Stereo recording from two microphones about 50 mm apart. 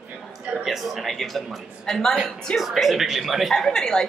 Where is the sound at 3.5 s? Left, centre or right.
Centre.